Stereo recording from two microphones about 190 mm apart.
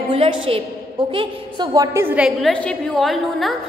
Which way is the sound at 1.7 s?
15° right (ahead or behind).